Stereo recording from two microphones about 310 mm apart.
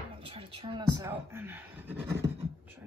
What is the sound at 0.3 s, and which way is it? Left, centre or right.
Speech, centre.